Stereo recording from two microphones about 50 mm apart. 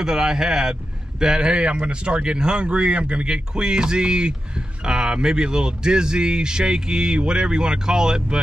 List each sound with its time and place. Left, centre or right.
0.0 s speech: centre